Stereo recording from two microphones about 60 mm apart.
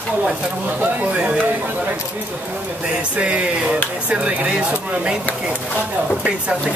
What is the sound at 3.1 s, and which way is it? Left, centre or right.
Speech, right.